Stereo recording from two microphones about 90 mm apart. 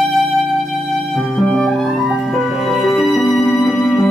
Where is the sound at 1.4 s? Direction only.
5° left (ahead or behind).